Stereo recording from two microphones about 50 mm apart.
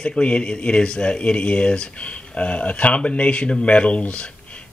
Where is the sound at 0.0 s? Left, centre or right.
Left.